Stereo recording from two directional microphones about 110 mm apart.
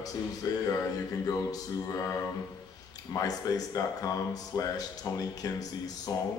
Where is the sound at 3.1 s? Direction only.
35° left (ahead or behind).